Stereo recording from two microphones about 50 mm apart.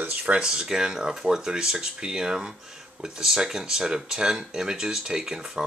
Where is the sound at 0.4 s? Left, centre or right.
Centre.